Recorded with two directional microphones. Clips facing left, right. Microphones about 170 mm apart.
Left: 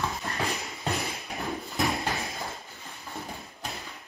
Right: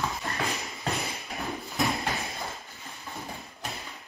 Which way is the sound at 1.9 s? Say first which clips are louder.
Left 1 dB; centre (ahead or behind).